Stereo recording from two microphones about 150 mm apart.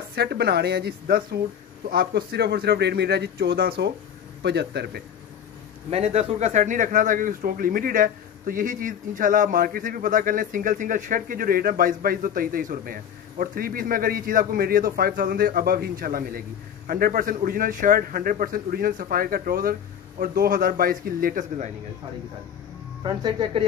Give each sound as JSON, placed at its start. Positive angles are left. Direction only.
{"t": 0.1, "sound": "speech", "side_deg": -90}
{"t": 5.9, "sound": "a man's voice", "side_deg": -45}
{"t": 23.0, "sound": "speech", "side_deg": -30}